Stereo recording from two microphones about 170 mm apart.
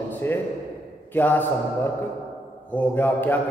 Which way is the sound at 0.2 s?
15° left (ahead or behind).